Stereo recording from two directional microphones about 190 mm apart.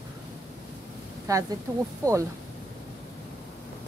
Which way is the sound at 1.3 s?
20° right (ahead or behind).